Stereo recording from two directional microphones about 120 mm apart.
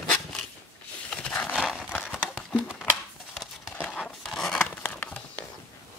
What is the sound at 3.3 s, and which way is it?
Crumpling, centre (ahead or behind).